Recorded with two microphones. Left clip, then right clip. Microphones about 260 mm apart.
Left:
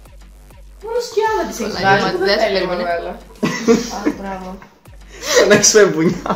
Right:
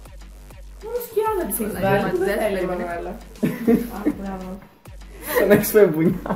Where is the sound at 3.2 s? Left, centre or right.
Centre.